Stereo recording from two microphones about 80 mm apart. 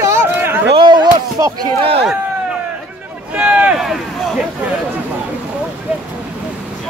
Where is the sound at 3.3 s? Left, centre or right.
Centre.